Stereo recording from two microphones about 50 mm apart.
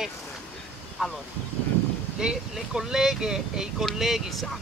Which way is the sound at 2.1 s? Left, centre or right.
Centre.